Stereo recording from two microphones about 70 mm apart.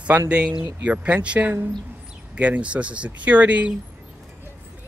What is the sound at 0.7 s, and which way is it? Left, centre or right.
Speech, centre.